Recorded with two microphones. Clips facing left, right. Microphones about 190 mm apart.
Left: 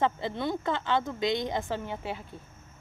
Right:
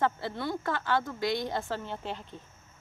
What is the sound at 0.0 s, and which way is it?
A woman's voice, 20° left (ahead or behind).